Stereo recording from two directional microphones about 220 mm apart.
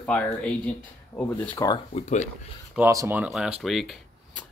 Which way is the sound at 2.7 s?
10° right (ahead or behind).